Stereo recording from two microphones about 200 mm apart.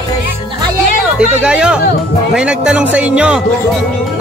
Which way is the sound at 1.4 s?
5° right (ahead or behind).